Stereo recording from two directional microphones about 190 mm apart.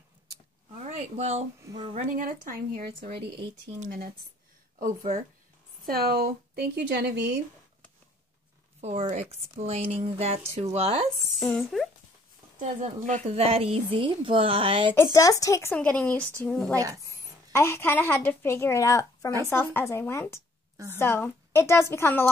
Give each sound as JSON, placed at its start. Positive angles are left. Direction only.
{"t": 0.7, "sound": "a sound", "side_deg": -35}
{"t": 1.6, "sound": "a woman's voice", "side_deg": -20}
{"t": 2.0, "sound": "speech", "side_deg": -45}
{"t": 5.9, "sound": "a woman's voice", "side_deg": -55}
{"t": 8.8, "sound": "speech", "side_deg": -30}
{"t": 11.3, "sound": "speech", "side_deg": 0}
{"t": 12.5, "sound": "a woman's voice", "side_deg": -40}
{"t": 15.4, "sound": "a woman's voice", "side_deg": 15}
{"t": 20.7, "sound": "a woman's voice", "side_deg": -15}
{"t": 21.0, "sound": "a woman's voice", "side_deg": 15}